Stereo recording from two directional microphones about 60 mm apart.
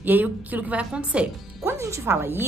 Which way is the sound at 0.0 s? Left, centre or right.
Right.